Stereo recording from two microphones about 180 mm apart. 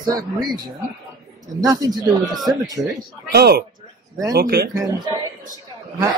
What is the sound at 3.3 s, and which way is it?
Speech, 65° right (ahead or behind).